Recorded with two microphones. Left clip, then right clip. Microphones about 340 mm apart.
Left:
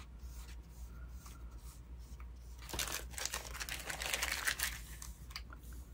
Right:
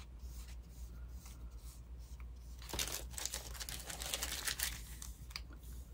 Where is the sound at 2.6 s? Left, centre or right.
Centre.